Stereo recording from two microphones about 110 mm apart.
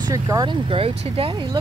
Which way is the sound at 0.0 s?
30° right (ahead or behind).